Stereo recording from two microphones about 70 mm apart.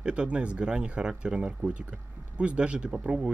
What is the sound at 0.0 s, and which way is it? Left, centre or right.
Speech, centre.